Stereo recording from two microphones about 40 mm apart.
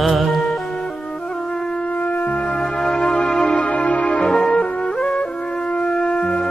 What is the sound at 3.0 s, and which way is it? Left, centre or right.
Music, centre.